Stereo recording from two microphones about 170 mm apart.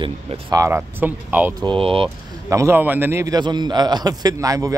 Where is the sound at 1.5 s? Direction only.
30° right (ahead or behind).